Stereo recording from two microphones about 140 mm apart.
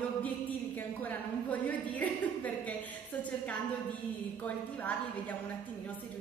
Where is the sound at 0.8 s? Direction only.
10° left (ahead or behind).